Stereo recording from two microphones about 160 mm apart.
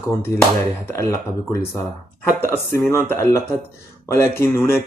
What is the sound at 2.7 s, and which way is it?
Speech, 15° left (ahead or behind).